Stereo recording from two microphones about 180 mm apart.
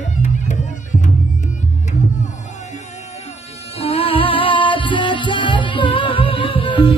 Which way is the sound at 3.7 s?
30° left (ahead or behind).